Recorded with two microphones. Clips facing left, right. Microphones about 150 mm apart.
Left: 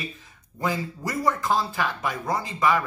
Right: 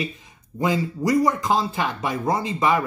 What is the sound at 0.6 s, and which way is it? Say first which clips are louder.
Speech: right 5 dB; 15° right (ahead or behind).